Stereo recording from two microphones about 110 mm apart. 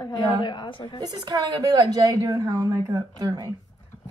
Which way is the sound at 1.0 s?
35° right (ahead or behind).